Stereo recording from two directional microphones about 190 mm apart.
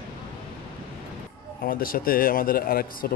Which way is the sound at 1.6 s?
50° left (ahead or behind).